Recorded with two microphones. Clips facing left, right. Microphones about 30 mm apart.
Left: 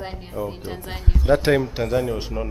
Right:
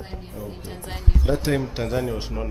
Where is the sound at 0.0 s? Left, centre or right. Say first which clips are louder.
Left 5 dB; left.